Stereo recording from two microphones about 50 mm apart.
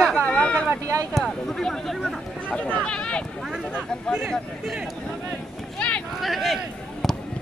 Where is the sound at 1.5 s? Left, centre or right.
Centre.